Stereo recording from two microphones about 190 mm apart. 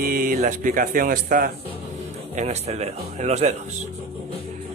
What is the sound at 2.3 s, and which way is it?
Speech, 35° right (ahead or behind).